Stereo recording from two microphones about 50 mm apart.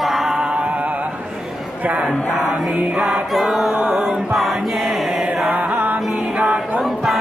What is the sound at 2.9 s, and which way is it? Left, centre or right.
Choir, centre.